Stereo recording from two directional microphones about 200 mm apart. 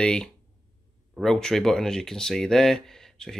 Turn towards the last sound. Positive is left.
turn(degrees=0)  # may be behind; listen again after turning